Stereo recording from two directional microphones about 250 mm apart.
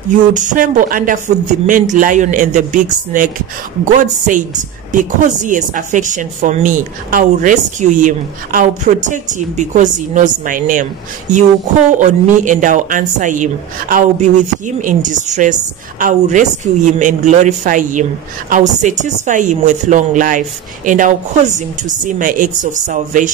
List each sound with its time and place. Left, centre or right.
0.3 s a woman's voice: right